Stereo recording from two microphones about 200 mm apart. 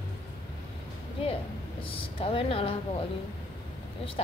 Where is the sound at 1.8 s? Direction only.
25° left (ahead or behind).